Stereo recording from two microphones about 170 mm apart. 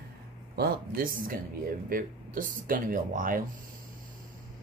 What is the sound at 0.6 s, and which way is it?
Speech, 60° right (ahead or behind).